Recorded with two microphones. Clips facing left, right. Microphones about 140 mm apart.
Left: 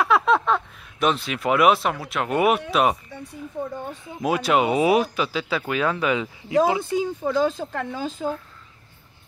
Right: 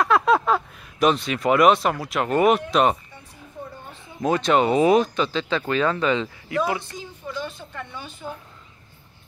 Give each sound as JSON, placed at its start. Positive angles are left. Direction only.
{"t": 0.0, "sound": "speech", "side_deg": 0}
{"t": 4.2, "sound": "speech", "side_deg": 10}
{"t": 6.5, "sound": "speech", "side_deg": 25}
{"t": 7.2, "sound": "speech", "side_deg": 90}